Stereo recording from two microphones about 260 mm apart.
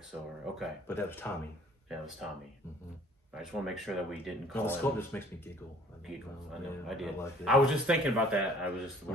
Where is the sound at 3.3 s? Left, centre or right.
Centre.